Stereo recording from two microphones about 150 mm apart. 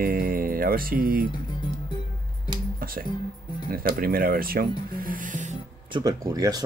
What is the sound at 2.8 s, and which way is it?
Speech, 75° right (ahead or behind).